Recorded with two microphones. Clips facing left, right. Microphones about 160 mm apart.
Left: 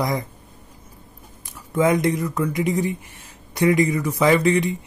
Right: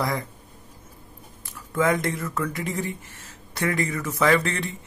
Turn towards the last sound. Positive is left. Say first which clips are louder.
# left 5 dB
turn(degrees=15)  # may be behind; listen again after turning